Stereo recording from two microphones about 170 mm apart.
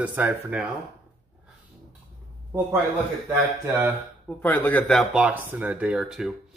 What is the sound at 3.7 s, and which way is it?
Speech, 15° right (ahead or behind).